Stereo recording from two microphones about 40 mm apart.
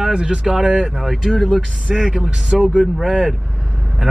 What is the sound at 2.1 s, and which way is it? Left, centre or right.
Speech, centre.